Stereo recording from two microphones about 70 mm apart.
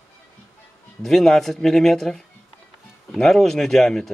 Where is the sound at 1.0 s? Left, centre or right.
Centre.